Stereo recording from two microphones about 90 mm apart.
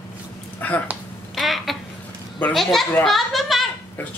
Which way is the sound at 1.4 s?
Centre (ahead or behind).